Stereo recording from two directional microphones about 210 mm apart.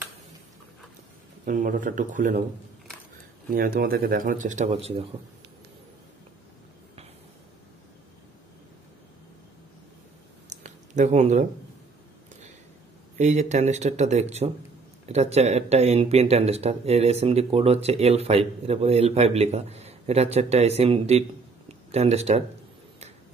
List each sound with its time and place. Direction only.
1.4 s speech: 40° right (ahead or behind)
3.4 s speech: 40° right (ahead or behind)
10.5 s a sound: 35° right (ahead or behind)
13.2 s a man's voice: 35° right (ahead or behind)